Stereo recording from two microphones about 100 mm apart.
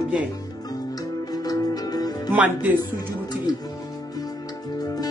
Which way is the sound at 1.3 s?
40° left (ahead or behind).